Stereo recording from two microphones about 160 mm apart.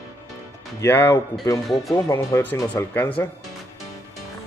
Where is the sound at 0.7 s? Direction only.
15° left (ahead or behind).